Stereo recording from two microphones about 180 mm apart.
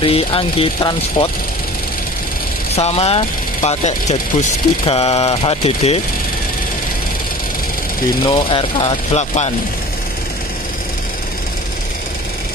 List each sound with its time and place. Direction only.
0.0 s speech: 30° left (ahead or behind)
2.7 s speech: 35° left (ahead or behind)
8.2 s speech: 25° left (ahead or behind)